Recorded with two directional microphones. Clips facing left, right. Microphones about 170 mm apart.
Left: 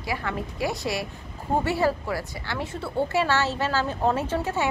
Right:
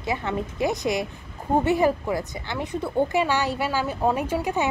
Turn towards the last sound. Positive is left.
turn(degrees=-15)  # may be behind; listen again after turning